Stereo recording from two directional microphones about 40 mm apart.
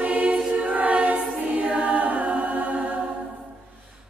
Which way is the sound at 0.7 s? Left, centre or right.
Right.